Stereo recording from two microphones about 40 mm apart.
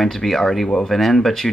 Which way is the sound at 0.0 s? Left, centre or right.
Centre.